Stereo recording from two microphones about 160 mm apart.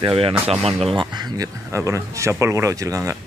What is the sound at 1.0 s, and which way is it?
Speech, 25° right (ahead or behind).